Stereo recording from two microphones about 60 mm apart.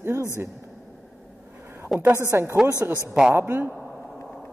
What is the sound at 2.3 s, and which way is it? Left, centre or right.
Speech, right.